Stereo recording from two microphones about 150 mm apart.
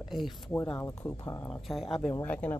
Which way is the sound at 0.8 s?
20° left (ahead or behind).